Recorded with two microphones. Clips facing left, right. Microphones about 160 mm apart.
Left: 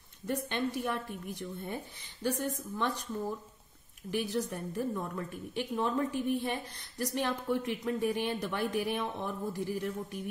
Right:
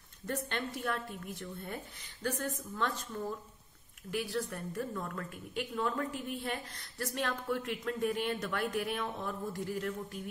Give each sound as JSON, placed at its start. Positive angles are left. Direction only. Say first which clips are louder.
{"t": 0.3, "sound": "a woman's voice", "louder": "left 4 dB", "side_deg": 15}